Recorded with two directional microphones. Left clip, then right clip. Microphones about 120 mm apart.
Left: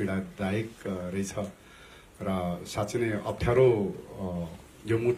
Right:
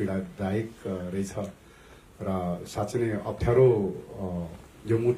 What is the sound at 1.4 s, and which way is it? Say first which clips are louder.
A man's voice: even; 25° left (ahead or behind).